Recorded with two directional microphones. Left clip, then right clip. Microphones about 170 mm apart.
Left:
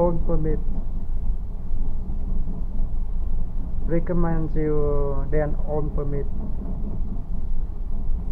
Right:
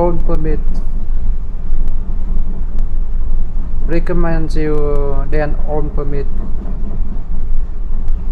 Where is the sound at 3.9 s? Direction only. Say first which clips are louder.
Right 7 dB; 25° right (ahead or behind).